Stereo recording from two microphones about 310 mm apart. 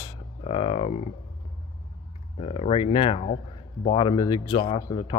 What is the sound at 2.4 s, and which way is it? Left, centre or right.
Speech, centre.